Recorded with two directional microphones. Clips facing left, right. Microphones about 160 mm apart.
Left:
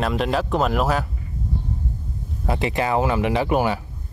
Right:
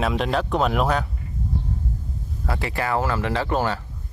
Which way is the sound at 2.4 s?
20° left (ahead or behind).